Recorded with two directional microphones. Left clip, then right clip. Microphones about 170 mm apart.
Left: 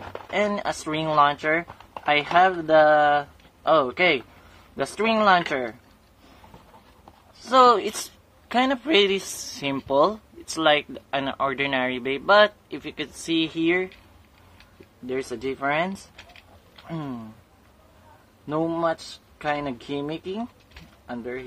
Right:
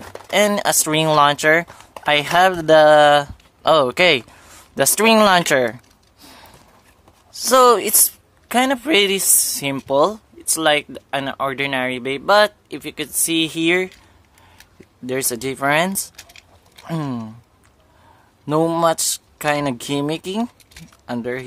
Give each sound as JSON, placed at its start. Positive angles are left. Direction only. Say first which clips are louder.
{"t": 0.3, "sound": "speech", "louder": "right 8 dB", "side_deg": -50}
{"t": 7.4, "sound": "speech", "louder": "right 4 dB", "side_deg": -55}
{"t": 15.0, "sound": "speech", "louder": "right 5 dB", "side_deg": -50}
{"t": 18.5, "sound": "speech", "louder": "right 8 dB", "side_deg": -60}